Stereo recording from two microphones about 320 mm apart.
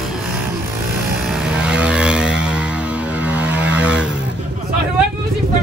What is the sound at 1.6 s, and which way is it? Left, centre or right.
Vehicle, centre.